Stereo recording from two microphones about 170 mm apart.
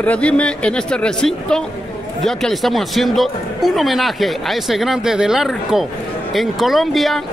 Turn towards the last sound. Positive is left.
turn(degrees=0)  # may be behind; listen again after turning